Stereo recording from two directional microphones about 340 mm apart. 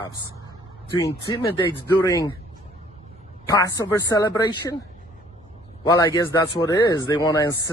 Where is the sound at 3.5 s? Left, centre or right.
Centre.